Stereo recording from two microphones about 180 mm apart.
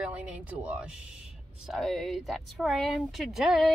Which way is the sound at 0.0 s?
5° right (ahead or behind).